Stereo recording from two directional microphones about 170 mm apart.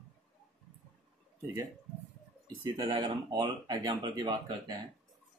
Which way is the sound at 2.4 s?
25° right (ahead or behind).